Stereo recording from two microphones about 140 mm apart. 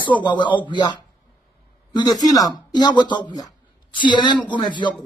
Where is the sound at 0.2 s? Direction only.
30° left (ahead or behind).